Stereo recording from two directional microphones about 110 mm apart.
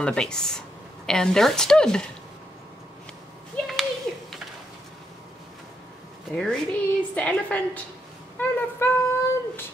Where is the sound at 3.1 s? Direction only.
5° left (ahead or behind).